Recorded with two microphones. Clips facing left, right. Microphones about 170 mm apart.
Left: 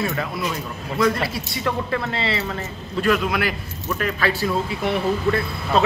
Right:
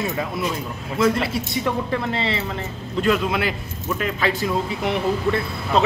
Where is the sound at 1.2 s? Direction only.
20° right (ahead or behind).